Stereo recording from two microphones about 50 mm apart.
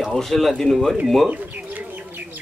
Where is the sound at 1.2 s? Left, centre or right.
Right.